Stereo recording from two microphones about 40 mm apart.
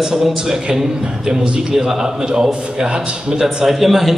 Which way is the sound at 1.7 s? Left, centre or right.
Centre.